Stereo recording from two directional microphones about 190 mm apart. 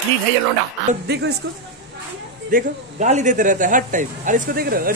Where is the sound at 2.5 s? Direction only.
45° right (ahead or behind).